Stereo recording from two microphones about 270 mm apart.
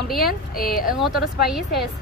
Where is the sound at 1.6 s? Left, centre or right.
Left.